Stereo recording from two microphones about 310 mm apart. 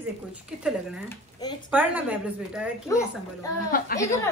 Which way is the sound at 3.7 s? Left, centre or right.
Left.